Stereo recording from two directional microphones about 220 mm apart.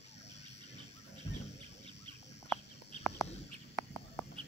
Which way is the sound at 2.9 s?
30° left (ahead or behind).